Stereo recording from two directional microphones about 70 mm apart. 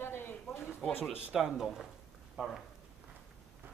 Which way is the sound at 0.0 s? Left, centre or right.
Left.